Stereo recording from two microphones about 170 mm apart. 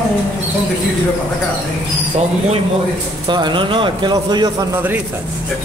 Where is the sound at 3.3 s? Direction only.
25° right (ahead or behind).